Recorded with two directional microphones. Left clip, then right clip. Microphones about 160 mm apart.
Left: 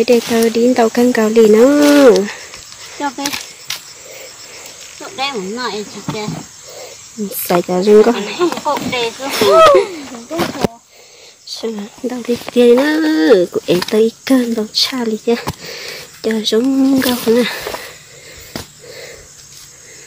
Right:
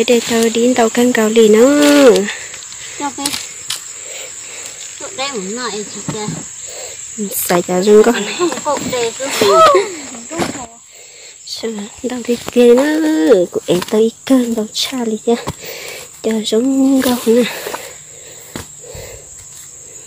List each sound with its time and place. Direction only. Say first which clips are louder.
0.0 s speech: left 1 dB; 5° left (ahead or behind)
3.0 s speech: left 2 dB; 5° left (ahead or behind)
3.3 s cap gun: even; 10° right (ahead or behind)
5.1 s speech: left 2 dB; 30° left (ahead or behind)
6.8 s speech: even; centre (ahead or behind)
8.6 s speech: even; 45° left (ahead or behind)
11.4 s speech: even; centre (ahead or behind)
15.6 s a sound: even; 15° right (ahead or behind)
17.1 s speech: right 1 dB; 10° right (ahead or behind)